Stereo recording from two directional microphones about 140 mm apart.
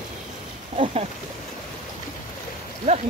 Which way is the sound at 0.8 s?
45° right (ahead or behind).